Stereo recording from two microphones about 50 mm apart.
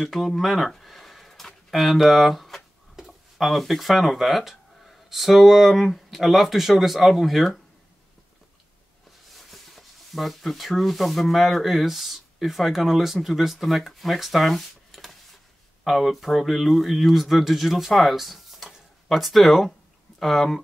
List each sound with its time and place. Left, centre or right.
0.0 s speech: centre
0.4 s a sound: centre
3.1 s speech: centre
9.3 s speech: centre